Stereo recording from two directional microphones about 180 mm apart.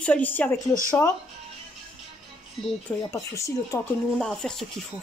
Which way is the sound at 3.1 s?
15° left (ahead or behind).